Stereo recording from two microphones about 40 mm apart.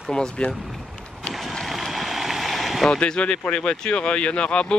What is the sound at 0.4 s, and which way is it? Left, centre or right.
Speech, left.